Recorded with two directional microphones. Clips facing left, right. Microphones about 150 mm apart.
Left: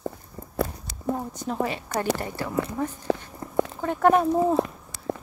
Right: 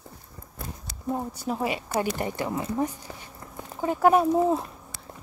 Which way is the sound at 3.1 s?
90° left.